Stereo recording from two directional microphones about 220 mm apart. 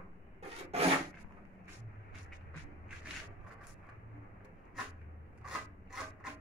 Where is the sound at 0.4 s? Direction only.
30° right (ahead or behind).